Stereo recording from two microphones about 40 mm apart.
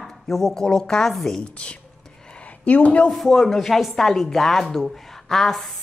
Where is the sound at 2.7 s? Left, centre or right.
Left.